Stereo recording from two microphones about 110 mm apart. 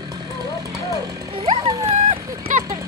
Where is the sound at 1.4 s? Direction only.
45° right (ahead or behind).